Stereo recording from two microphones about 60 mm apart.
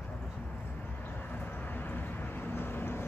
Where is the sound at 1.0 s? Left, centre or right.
Left.